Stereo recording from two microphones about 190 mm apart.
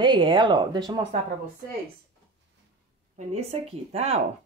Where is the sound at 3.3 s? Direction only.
30° right (ahead or behind).